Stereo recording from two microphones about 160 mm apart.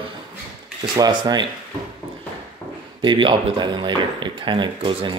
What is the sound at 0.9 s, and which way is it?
Speech, 25° right (ahead or behind).